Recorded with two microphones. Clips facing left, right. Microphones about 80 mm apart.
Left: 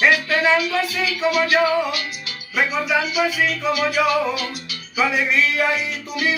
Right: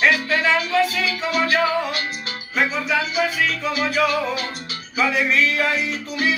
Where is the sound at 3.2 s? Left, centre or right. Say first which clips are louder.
Left 1 dB; right.